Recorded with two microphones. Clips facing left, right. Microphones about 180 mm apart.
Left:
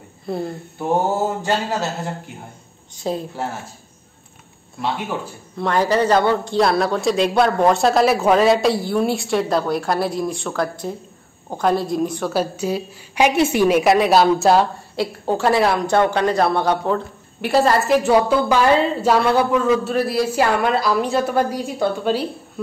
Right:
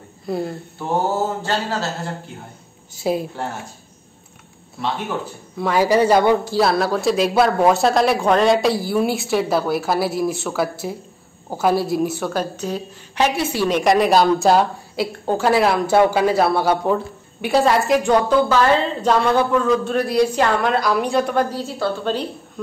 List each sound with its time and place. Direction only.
0.3 s a man's voice: centre (ahead or behind)
1.4 s a woman's voice: 15° left (ahead or behind)
2.9 s a woman's voice: 10° right (ahead or behind)
4.8 s a woman's voice: 10° left (ahead or behind)
5.6 s a man's voice: 5° right (ahead or behind)
12.3 s a woman's voice: 10° left (ahead or behind)
13.7 s a man's voice: 5° left (ahead or behind)